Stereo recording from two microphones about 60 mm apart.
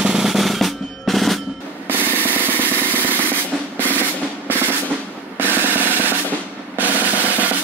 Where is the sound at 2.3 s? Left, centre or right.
Right.